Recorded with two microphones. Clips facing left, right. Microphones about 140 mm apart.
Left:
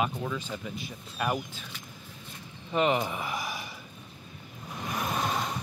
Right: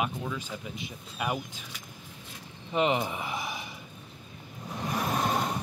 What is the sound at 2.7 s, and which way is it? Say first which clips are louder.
Speech: left 1 dB; 15° right (ahead or behind).